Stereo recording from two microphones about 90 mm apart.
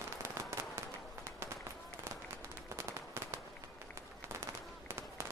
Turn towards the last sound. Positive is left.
turn(degrees=-30)  # may be behind; listen again after turning